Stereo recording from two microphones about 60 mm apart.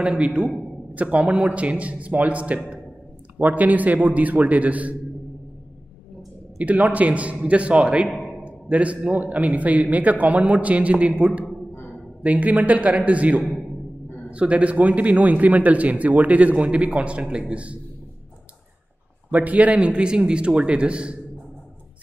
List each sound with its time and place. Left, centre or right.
0.0 s a man's voice: centre
6.6 s a man's voice: right
19.3 s a man's voice: right